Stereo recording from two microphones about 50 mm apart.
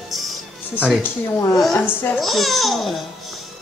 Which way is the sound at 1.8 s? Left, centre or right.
Left.